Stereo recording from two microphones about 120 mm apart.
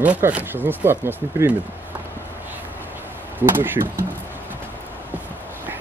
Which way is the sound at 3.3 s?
15° right (ahead or behind).